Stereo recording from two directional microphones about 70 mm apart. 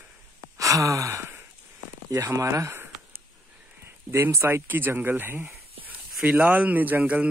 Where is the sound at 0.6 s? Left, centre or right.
Right.